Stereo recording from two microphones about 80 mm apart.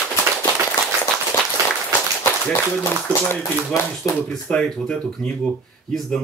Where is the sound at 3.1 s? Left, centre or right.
Left.